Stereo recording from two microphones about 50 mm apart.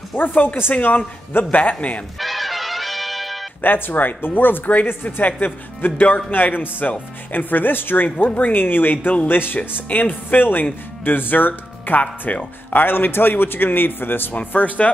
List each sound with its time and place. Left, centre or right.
0.2 s a man's voice: left
2.1 s music: centre
3.6 s a man's voice: left
12.8 s a man's voice: left